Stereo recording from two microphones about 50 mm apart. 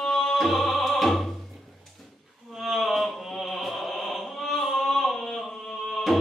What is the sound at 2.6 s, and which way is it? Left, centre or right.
Opera, centre.